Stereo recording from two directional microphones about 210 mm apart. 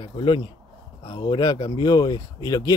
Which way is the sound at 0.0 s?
20° left (ahead or behind).